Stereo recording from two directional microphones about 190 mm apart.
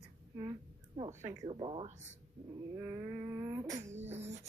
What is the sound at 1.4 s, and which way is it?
Speech, 30° right (ahead or behind).